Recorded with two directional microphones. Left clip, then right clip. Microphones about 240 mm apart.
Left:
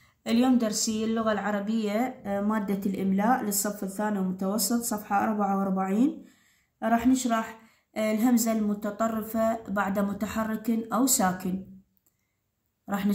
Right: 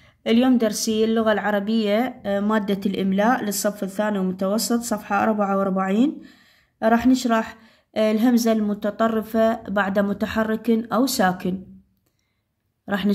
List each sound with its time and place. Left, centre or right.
0.0 s a woman's voice: right
12.8 s speech: right